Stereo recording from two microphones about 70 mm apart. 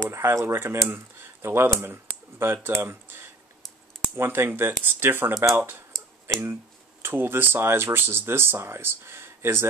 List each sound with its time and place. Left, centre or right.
0.1 s speech: right